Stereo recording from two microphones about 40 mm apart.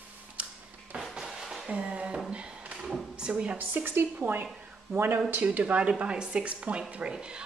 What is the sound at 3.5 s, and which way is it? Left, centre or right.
Speech, right.